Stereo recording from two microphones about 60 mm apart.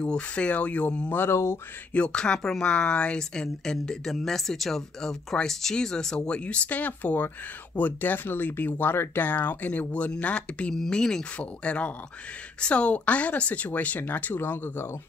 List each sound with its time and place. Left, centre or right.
0.0 s speech: centre
1.2 s speech: left
2.0 s speech: centre
10.7 s speech: centre; by 14.9 s left